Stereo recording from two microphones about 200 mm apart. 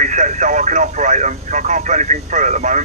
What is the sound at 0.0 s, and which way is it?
Speech, 40° right (ahead or behind).